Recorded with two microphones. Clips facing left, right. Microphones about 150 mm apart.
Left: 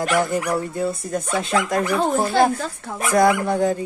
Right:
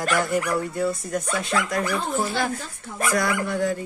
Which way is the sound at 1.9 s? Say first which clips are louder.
Left 6 dB; 65° left (ahead or behind).